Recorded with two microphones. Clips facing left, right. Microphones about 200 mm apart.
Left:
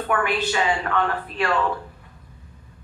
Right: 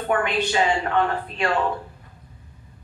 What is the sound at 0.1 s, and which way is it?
Speech, 25° right (ahead or behind).